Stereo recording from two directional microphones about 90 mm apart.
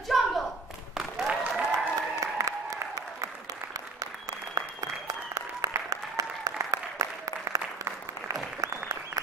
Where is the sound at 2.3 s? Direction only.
40° right (ahead or behind).